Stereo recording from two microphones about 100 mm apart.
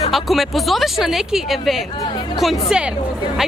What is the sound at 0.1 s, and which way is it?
Speech, centre (ahead or behind).